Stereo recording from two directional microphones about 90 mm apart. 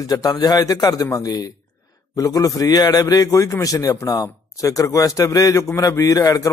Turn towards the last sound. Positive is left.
turn(degrees=40)  # may be behind; listen again after turning